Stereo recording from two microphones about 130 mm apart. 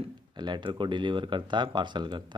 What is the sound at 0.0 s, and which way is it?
Speech, 35° right (ahead or behind).